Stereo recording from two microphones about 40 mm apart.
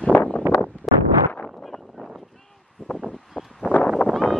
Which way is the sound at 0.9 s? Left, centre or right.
Centre.